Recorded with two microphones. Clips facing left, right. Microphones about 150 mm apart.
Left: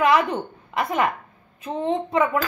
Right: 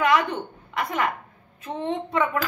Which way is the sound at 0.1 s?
25° left (ahead or behind).